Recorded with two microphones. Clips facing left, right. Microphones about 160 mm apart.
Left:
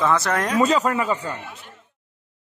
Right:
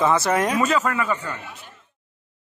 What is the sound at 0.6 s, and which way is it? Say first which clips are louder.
Speech: left 2 dB; 30° left (ahead or behind).